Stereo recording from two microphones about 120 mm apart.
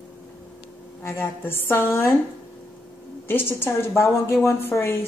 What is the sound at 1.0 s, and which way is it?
A woman's voice, 20° left (ahead or behind).